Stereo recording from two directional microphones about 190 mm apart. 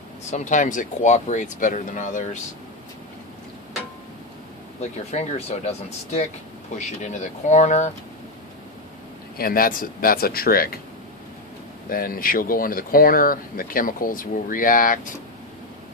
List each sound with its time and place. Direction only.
0.3 s speech: 40° left (ahead or behind)
5.1 s speech: 35° left (ahead or behind)
9.4 s speech: 50° left (ahead or behind)
11.9 s speech: 50° left (ahead or behind)